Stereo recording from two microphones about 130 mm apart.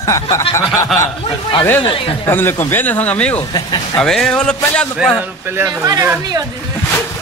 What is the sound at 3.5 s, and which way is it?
Speech, 30° left (ahead or behind).